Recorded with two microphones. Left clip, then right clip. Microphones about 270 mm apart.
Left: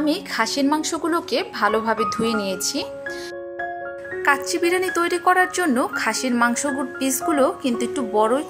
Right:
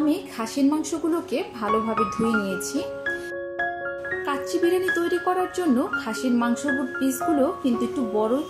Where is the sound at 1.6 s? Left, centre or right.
Left.